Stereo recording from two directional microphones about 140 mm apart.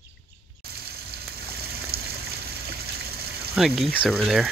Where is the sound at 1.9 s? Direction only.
90° right.